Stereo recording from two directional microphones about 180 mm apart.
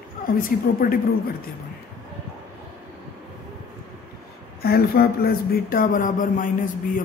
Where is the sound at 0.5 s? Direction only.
55° left (ahead or behind).